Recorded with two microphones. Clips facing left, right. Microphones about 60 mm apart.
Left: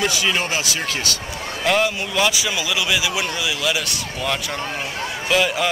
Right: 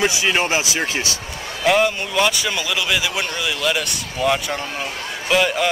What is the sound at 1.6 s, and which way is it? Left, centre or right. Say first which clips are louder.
Speech: right 3 dB; centre.